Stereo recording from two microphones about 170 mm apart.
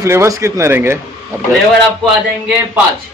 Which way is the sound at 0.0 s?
15° right (ahead or behind).